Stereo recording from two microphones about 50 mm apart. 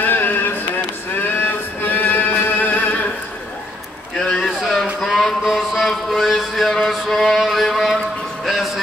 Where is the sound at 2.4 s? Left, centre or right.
Left.